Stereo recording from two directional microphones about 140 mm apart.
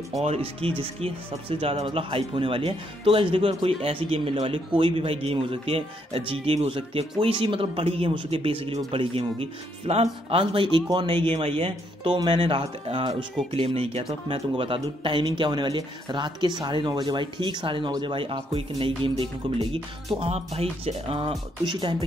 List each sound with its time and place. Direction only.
0.2 s speech: 45° right (ahead or behind)
20.8 s speech: 35° right (ahead or behind)